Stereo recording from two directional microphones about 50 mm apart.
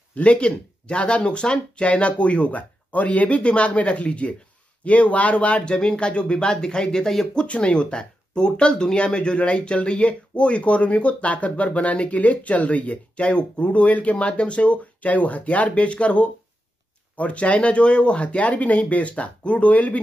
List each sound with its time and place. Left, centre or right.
0.1 s speech: left; by 7.4 s centre
7.4 s speech: left